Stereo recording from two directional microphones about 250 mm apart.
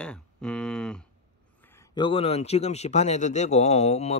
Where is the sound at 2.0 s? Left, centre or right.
Left.